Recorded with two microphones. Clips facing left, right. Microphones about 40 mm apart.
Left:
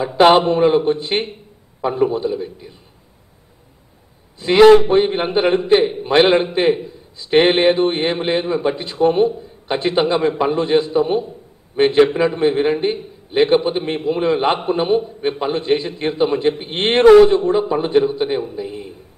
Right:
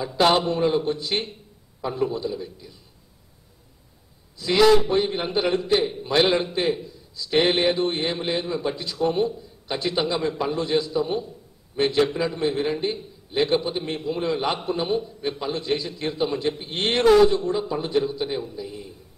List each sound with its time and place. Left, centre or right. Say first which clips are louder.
0.0 s a man's voice: left 8 dB; left
4.4 s a man's voice: left 8 dB; left